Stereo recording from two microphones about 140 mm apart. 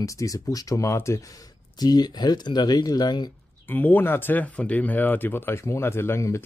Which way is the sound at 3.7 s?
15° left (ahead or behind).